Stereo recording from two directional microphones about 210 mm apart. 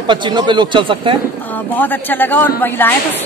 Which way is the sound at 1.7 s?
10° left (ahead or behind).